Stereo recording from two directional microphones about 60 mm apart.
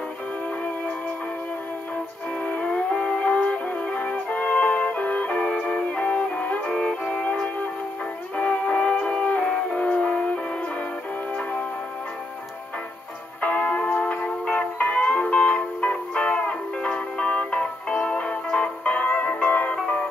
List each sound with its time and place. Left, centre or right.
2.7 s music: centre
6.7 s music: centre
7.2 s music: left
13.4 s music: left
14.2 s music: centre
14.8 s music: left
17.6 s music: centre
18.1 s music: centre